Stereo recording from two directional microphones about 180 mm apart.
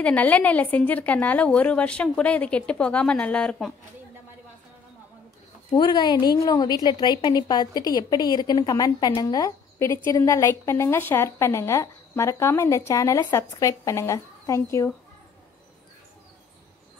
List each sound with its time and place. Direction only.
0.0 s a woman's voice: 10° left (ahead or behind)
5.7 s a woman's voice: 25° left (ahead or behind)